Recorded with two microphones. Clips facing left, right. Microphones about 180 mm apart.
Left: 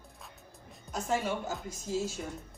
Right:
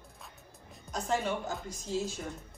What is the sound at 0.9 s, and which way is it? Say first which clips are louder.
A woman's voice: even; 5° left (ahead or behind).